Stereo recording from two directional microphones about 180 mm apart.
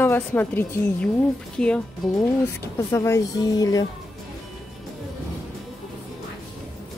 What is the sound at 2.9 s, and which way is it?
Speech, 15° left (ahead or behind).